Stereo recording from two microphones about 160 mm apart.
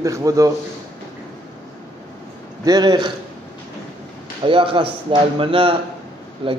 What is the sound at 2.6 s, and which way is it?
Speech, 25° right (ahead or behind).